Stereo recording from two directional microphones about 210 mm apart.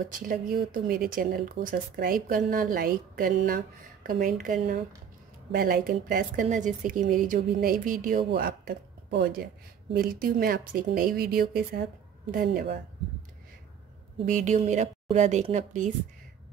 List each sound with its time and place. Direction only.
0.1 s a woman's voice: 40° right (ahead or behind)
14.2 s a woman's voice: 35° right (ahead or behind)